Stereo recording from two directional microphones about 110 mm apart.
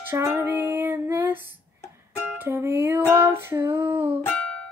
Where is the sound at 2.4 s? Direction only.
20° right (ahead or behind).